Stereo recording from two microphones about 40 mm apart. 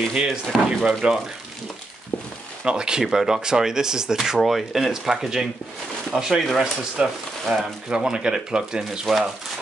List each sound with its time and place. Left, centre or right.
0.1 s speech: centre
2.6 s speech: right